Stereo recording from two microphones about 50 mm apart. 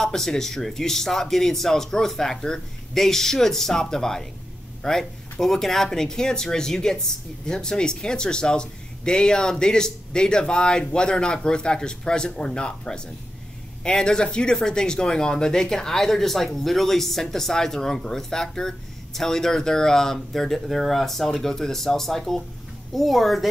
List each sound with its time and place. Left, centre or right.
0.0 s speech: centre